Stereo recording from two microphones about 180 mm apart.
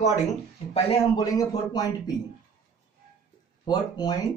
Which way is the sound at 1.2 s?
20° left (ahead or behind).